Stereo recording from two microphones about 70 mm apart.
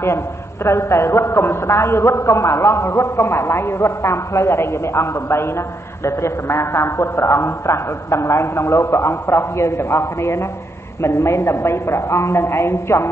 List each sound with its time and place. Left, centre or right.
0.7 s a man's voice: left